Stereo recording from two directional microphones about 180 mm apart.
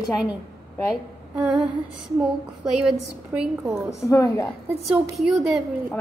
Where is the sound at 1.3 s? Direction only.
5° right (ahead or behind).